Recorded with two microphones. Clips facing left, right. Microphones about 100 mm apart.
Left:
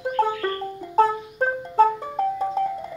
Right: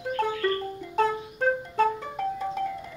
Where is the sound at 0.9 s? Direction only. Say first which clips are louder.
Left 6 dB; 30° left (ahead or behind).